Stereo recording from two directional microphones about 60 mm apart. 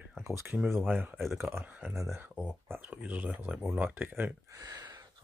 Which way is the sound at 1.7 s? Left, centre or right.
Right.